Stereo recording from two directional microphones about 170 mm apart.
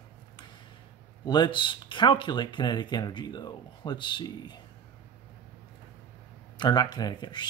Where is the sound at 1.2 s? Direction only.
25° left (ahead or behind).